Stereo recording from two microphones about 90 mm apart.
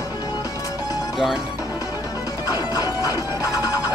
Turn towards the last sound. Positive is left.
turn(degrees=45)  # may be behind; listen again after turning